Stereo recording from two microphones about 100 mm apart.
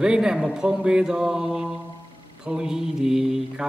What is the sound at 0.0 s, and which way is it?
Speech, 10° right (ahead or behind).